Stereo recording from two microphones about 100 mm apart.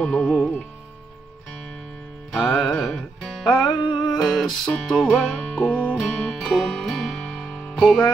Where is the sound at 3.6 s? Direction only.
50° left (ahead or behind).